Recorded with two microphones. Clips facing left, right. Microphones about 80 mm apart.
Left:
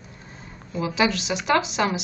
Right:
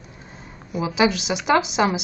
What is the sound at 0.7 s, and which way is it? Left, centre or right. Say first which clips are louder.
Speech: right 3 dB; centre.